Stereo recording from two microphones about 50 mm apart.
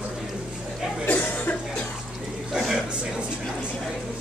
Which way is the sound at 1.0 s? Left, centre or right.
Left.